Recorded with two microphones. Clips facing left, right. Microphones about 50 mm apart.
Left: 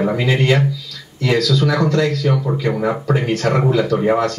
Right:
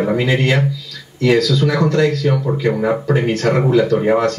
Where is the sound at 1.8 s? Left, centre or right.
Centre.